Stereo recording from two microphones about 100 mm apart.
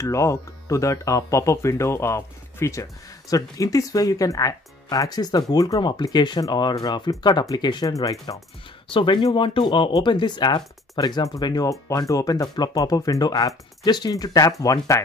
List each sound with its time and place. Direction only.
0.0 s speech: 30° left (ahead or behind); by 7.9 s 45° left (ahead or behind)
7.9 s speech: 35° left (ahead or behind)
8.9 s speech: 50° left (ahead or behind); by 15.0 s 35° left (ahead or behind)